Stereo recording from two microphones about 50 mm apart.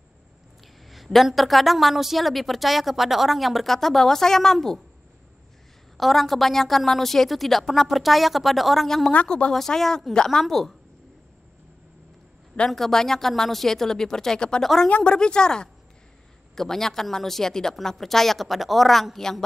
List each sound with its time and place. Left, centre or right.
0.8 s a woman's voice: centre
5.9 s a woman's voice: centre
12.6 s a woman's voice: centre